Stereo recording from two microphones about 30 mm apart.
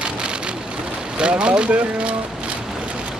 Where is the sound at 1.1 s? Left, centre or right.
Right.